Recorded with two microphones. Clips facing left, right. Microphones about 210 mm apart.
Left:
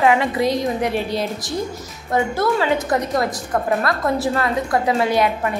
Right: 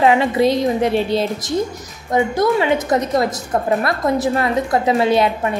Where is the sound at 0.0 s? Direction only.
30° right (ahead or behind).